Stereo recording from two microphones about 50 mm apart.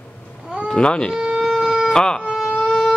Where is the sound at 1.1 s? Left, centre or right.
Centre.